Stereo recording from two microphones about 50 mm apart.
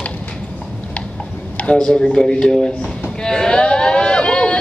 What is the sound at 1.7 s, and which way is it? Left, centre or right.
Speech, centre.